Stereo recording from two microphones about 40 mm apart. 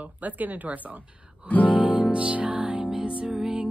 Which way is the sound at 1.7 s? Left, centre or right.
Right.